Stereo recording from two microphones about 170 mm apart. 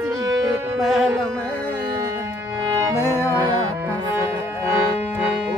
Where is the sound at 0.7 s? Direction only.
Centre (ahead or behind).